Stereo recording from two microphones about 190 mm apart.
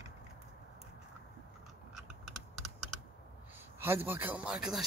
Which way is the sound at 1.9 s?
Centre (ahead or behind).